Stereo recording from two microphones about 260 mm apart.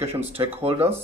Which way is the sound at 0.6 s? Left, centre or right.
Right.